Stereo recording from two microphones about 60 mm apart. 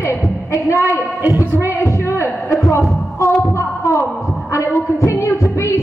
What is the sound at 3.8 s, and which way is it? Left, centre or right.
Heart sounds, left.